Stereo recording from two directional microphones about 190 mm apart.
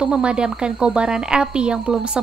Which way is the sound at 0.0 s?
5° right (ahead or behind).